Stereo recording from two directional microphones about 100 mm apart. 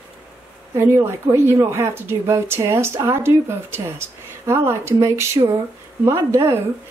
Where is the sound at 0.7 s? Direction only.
25° right (ahead or behind).